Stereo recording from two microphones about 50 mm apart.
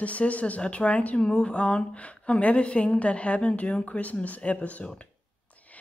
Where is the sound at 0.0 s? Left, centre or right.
Left.